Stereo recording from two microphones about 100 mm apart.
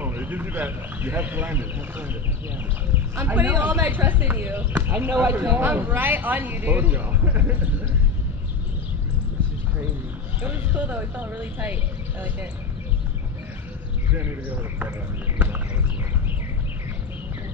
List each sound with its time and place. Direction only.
0.0 s speech: 20° right (ahead or behind)
10.4 s speech: 15° right (ahead or behind)
14.1 s speech: 20° right (ahead or behind)